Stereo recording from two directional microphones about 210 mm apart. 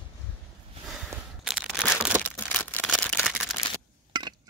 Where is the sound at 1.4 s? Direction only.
Centre (ahead or behind).